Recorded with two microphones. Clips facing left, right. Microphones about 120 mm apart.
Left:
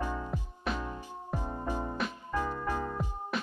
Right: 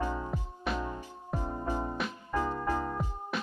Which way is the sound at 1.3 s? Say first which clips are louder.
Right 2 dB; 15° right (ahead or behind).